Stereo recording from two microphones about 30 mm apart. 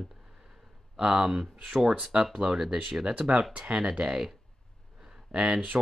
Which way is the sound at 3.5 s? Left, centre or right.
Right.